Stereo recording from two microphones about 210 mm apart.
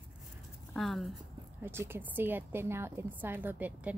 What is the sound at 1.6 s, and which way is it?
Speech, 10° right (ahead or behind).